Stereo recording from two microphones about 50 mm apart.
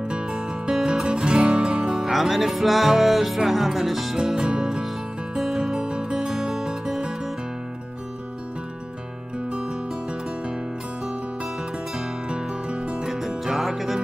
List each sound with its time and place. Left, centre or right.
0.1 s music: centre
4.2 s music: centre
9.5 s music: centre
12.3 s music: centre
13.4 s music: centre